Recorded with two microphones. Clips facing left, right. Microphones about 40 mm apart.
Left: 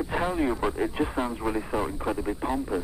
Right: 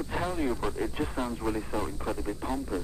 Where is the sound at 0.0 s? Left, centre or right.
Centre.